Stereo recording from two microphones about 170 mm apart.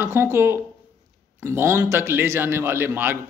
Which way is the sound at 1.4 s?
15° right (ahead or behind).